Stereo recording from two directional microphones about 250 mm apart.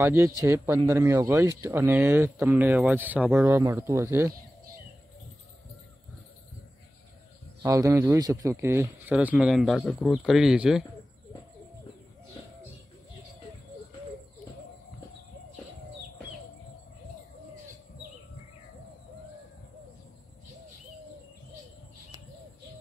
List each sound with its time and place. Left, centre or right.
0.0 s speech: centre
7.6 s speech: centre